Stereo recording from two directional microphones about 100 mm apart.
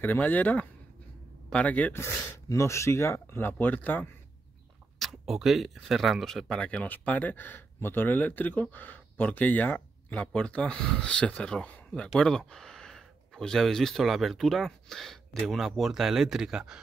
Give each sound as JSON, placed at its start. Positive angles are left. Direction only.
{"t": 0.0, "sound": "speech", "side_deg": 20}
{"t": 2.0, "sound": "speech", "side_deg": 25}
{"t": 4.9, "sound": "speech", "side_deg": 0}